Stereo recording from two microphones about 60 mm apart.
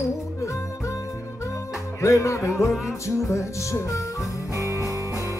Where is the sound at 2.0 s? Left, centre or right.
Left.